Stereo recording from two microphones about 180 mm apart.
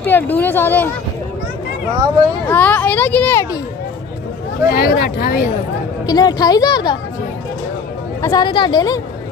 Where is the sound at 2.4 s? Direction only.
10° left (ahead or behind).